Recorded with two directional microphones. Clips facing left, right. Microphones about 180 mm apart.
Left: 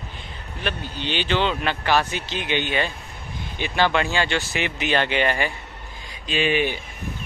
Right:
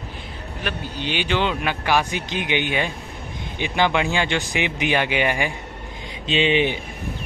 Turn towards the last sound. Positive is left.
turn(degrees=-20)  # may be behind; listen again after turning